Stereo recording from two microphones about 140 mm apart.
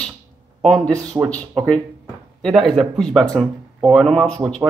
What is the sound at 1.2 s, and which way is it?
Speech, 15° right (ahead or behind).